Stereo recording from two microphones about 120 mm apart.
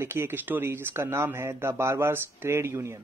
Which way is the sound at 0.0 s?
20° right (ahead or behind).